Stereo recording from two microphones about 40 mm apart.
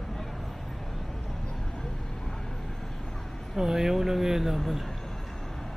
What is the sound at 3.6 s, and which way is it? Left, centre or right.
Speech, centre.